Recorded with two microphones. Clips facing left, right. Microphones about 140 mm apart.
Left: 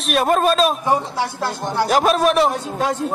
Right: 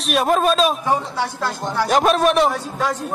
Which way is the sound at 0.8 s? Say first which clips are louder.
Left 1 dB; 15° left (ahead or behind).